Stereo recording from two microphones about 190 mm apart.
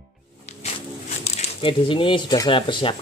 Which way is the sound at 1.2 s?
30° left (ahead or behind).